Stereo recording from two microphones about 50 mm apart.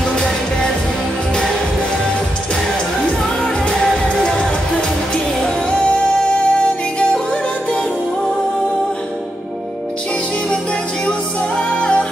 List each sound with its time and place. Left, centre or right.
11.8 s music: centre